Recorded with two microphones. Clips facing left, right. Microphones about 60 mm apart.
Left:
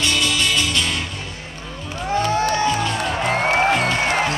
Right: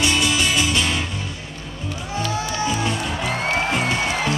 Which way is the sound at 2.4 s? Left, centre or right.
Left.